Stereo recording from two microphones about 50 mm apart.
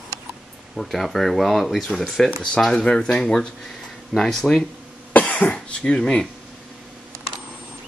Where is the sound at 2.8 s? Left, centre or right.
Centre.